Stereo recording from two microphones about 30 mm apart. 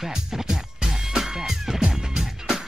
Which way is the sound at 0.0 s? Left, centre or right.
Centre.